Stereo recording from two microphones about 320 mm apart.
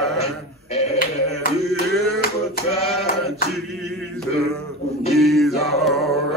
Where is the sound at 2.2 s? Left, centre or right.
Centre.